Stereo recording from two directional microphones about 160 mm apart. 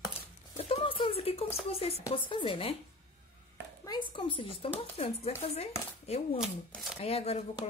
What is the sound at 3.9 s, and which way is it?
Speech, 30° left (ahead or behind).